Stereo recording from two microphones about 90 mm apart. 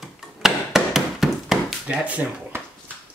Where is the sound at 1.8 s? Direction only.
15° right (ahead or behind).